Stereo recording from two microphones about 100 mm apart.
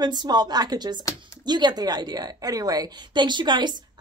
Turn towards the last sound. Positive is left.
turn(degrees=-50)  # may be behind; listen again after turning